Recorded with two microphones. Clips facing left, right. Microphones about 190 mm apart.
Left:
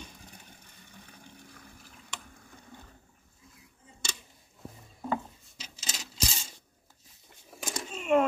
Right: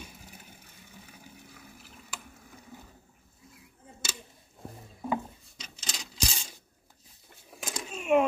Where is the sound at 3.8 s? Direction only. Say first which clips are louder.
Right 6 dB; 55° right (ahead or behind).